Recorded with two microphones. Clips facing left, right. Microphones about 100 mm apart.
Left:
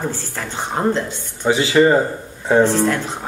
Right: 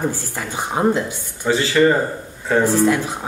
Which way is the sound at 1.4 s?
20° left (ahead or behind).